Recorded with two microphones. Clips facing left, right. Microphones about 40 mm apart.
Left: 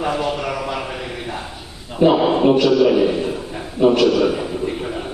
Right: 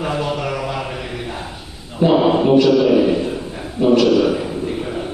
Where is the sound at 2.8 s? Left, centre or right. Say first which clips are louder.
Right 1 dB; centre.